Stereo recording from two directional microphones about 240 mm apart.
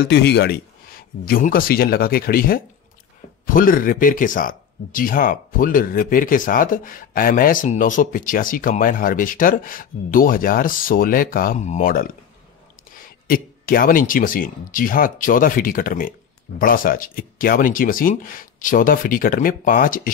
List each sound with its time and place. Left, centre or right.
0.0 s speech: left